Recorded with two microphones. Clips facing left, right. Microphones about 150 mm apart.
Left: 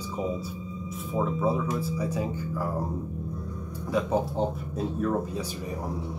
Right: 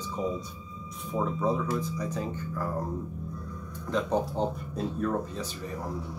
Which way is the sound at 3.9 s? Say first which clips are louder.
Left 2 dB; 10° left (ahead or behind).